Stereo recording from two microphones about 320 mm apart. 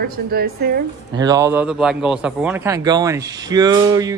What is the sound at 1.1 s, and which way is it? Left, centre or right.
A man's voice, centre.